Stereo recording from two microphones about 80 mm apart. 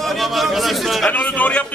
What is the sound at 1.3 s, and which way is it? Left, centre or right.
Speech, centre.